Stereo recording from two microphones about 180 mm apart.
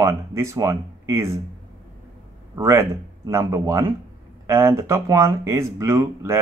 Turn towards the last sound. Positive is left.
turn(degrees=-15)  # may be behind; listen again after turning